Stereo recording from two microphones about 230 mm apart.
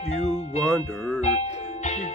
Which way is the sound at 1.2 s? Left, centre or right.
Left.